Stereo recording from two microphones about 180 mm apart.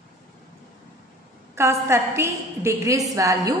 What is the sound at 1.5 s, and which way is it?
A woman's voice, 15° right (ahead or behind).